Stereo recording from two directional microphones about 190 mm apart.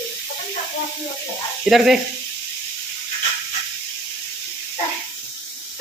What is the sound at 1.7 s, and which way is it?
Speech, centre (ahead or behind).